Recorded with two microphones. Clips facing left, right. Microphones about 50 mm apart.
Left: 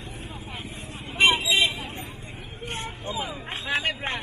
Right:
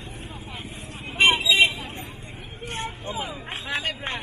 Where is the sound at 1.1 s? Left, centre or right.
Right.